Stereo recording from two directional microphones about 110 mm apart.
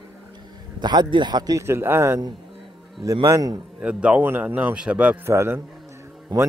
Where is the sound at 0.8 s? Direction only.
40° right (ahead or behind); by 2.2 s 20° right (ahead or behind).